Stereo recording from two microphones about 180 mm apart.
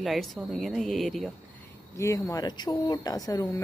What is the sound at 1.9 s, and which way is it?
Speech, 15° left (ahead or behind).